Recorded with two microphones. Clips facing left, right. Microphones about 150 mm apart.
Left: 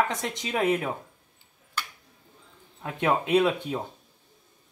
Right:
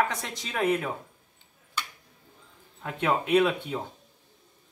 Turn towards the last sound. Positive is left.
turn(degrees=20)  # may be behind; listen again after turning